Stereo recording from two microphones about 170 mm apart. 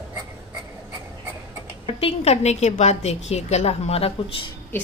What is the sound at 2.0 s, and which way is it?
A woman's voice, 40° left (ahead or behind).